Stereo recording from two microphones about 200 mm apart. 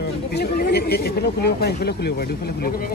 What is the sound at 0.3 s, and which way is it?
Speech, 55° left (ahead or behind).